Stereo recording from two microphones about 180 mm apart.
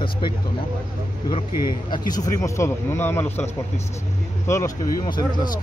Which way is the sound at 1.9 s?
20° left (ahead or behind).